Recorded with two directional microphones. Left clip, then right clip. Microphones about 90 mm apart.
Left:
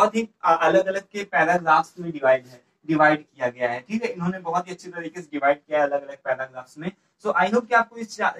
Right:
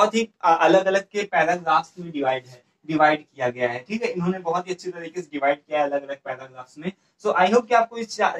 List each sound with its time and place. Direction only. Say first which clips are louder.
0.0 s speech: right 1 dB; 45° right (ahead or behind)